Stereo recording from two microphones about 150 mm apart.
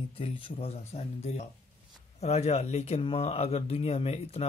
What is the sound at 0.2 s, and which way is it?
Speech, 35° left (ahead or behind).